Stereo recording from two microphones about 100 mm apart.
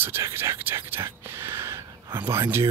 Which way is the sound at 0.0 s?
25° right (ahead or behind).